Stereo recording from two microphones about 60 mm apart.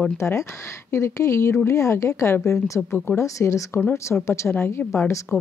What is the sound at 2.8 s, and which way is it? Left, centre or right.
Speech, left.